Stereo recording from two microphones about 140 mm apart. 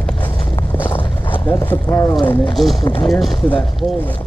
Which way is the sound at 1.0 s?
35° left (ahead or behind).